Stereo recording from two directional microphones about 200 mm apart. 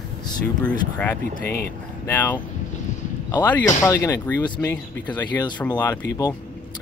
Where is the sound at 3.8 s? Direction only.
15° left (ahead or behind).